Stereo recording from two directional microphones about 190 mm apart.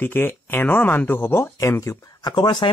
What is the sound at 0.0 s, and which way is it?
Speech, 10° left (ahead or behind).